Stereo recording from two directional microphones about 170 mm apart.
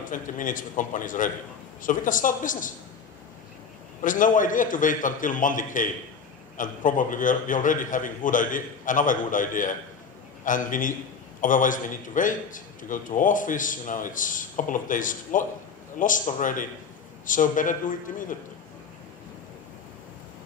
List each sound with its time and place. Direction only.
0.0 s a man's voice: 50° left (ahead or behind)
4.0 s a man's voice: 50° left (ahead or behind)